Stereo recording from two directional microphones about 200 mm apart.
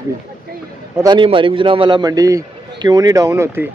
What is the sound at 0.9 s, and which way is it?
A man's voice, 20° right (ahead or behind).